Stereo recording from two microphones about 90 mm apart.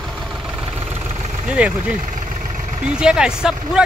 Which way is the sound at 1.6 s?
15° right (ahead or behind).